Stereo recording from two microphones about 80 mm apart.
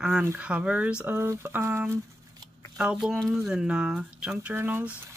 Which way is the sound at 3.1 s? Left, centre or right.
Centre.